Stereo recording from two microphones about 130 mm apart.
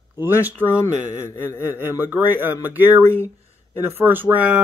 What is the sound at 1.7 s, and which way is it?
Speech, 15° right (ahead or behind).